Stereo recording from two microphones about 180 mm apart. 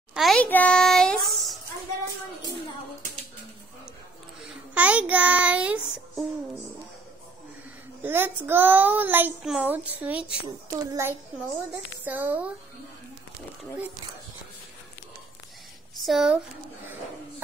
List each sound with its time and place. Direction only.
0.1 s a sound: centre (ahead or behind)
4.7 s child singing: 5° right (ahead or behind)
8.0 s a child's voice: 10° right (ahead or behind)
10.4 s a child's voice: 20° right (ahead or behind)
16.0 s speech: centre (ahead or behind)